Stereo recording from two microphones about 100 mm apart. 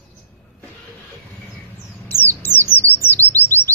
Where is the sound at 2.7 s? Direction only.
20° left (ahead or behind).